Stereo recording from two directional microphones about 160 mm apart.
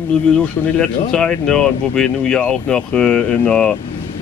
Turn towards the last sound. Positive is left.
turn(degrees=5)  # may be behind; listen again after turning